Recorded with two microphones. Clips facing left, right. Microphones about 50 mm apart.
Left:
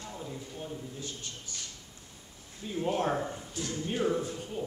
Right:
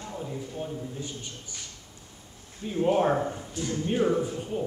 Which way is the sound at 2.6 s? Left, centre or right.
Centre.